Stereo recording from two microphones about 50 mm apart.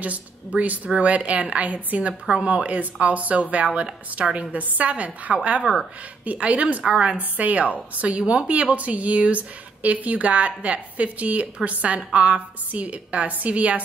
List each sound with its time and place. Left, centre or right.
0.5 s speech: right
5.6 s speech: centre
6.2 s speech: right